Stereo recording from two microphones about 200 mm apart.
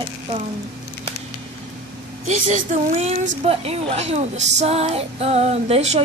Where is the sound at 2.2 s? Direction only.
35° right (ahead or behind).